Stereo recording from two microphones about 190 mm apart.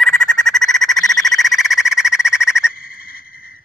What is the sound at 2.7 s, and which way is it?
Owl, 50° left (ahead or behind).